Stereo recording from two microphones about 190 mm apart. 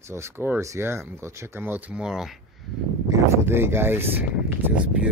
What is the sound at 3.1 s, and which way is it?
Speech, 15° right (ahead or behind).